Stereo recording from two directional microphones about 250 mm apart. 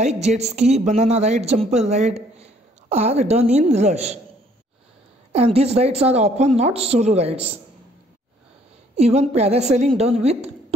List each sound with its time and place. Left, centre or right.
0.3 s a woman's voice: right
5.3 s speech: right
8.9 s speech: right